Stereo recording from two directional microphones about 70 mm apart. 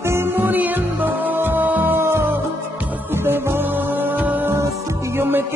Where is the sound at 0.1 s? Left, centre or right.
Right.